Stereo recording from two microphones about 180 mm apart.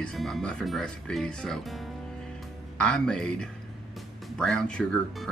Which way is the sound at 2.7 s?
5° left (ahead or behind).